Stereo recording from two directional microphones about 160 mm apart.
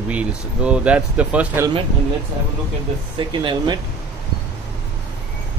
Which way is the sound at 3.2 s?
30° right (ahead or behind).